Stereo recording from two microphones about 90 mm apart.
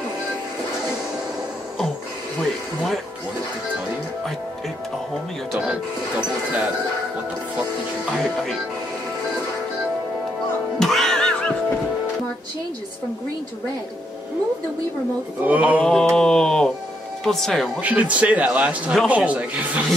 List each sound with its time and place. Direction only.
5.6 s a man's voice: 10° right (ahead or behind)
8.2 s speech: 5° left (ahead or behind)
10.8 s music: 5° left (ahead or behind)
15.4 s a man's voice: 15° right (ahead or behind)
15.8 s a sound: 10° left (ahead or behind)
17.2 s speech: 5° left (ahead or behind)
17.7 s a man's voice: 15° right (ahead or behind)